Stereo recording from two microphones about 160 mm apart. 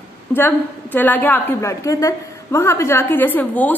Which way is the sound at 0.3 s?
10° left (ahead or behind).